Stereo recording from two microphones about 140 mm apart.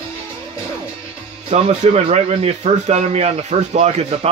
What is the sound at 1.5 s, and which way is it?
Speech, 55° right (ahead or behind).